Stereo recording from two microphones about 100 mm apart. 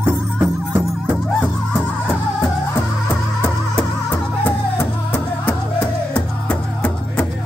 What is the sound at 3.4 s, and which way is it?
Music, 20° left (ahead or behind).